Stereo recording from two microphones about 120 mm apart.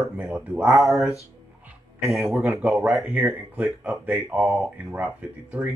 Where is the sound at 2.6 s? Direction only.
Centre (ahead or behind).